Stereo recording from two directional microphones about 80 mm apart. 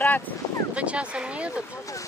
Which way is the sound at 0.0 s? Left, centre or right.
Left.